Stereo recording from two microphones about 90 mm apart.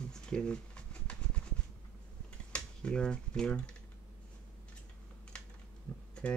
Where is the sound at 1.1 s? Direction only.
15° left (ahead or behind).